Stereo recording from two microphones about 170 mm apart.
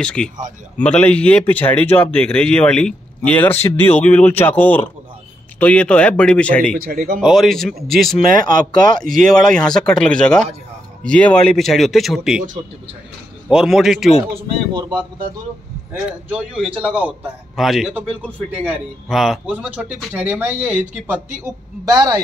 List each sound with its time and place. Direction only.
0.0 s a man's voice: 5° left (ahead or behind)
6.7 s speech: 60° right (ahead or behind)
7.2 s a man's voice: centre (ahead or behind)
13.5 s a man's voice: 5° right (ahead or behind)
14.3 s speech: 25° right (ahead or behind)
15.9 s a man's voice: 5° right (ahead or behind)
21.8 s speech: 20° right (ahead or behind)